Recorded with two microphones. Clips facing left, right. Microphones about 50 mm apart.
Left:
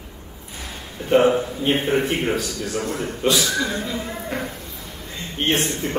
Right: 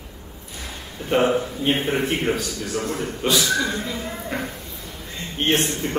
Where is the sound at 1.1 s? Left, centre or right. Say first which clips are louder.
Left 3 dB; centre.